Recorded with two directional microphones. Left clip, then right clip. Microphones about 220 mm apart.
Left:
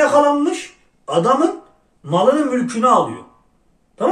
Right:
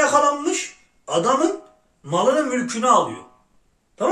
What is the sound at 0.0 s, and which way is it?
A man's voice, 5° right (ahead or behind).